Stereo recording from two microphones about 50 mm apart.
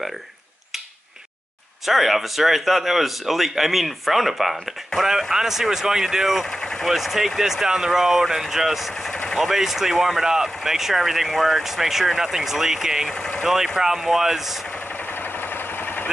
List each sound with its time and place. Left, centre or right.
1.9 s speech: centre
6.6 s speech: centre
6.9 s speech: centre
9.1 s vehicle: centre
9.4 s speech: centre
15.5 s vehicle: left